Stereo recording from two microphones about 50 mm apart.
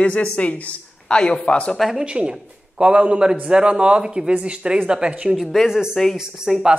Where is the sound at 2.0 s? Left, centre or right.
Right.